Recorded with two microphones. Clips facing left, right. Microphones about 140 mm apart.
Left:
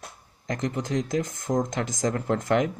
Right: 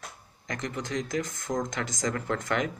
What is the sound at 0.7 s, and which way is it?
Speech, 25° left (ahead or behind).